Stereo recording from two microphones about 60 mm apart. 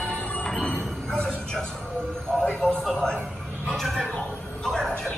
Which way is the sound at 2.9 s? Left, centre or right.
Centre.